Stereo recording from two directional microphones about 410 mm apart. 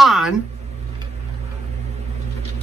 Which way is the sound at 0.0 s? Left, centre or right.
Centre.